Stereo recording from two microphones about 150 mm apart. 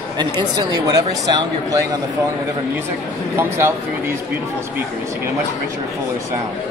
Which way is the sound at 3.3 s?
15° right (ahead or behind).